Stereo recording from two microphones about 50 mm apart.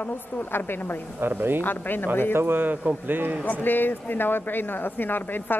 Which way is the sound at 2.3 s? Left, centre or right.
Right.